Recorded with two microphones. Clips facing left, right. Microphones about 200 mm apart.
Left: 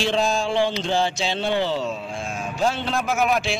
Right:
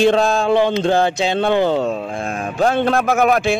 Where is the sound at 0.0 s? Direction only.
55° right (ahead or behind).